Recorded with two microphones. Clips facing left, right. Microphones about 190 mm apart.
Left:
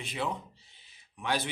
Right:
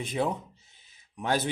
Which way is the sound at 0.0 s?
45° right (ahead or behind).